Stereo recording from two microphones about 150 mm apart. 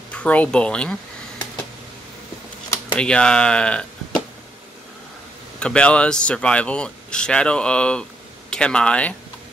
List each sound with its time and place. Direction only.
0.1 s speech: 10° left (ahead or behind)
3.0 s speech: 5° left (ahead or behind)
5.6 s speech: 5° left (ahead or behind)